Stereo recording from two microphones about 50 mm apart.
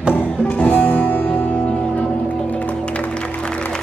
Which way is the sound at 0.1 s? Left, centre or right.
Left.